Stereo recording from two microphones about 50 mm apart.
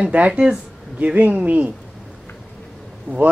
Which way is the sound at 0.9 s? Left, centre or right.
Right.